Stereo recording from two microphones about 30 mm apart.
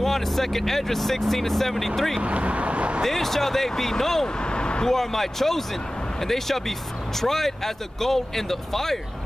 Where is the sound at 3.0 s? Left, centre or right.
Centre.